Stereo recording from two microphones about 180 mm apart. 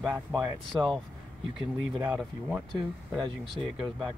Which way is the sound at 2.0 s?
5° right (ahead or behind).